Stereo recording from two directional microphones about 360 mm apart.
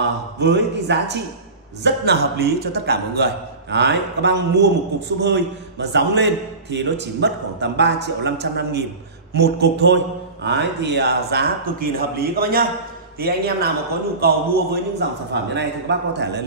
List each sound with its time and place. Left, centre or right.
0.4 s a man's voice: right